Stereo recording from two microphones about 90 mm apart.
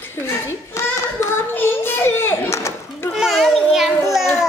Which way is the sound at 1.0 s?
30° left (ahead or behind).